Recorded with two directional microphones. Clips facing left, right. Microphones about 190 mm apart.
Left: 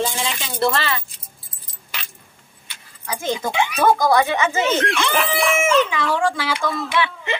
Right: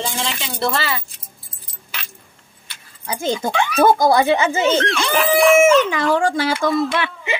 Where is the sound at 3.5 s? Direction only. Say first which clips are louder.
Right 1 dB; 15° left (ahead or behind).